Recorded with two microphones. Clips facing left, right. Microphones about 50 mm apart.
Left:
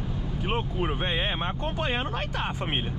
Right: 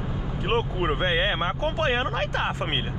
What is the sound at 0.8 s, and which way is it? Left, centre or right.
Speech, right.